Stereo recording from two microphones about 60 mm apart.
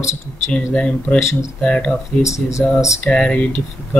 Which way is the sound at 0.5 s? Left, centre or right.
Centre.